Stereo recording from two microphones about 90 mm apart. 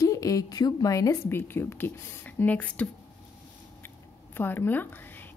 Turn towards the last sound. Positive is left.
turn(degrees=20)  # may be behind; listen again after turning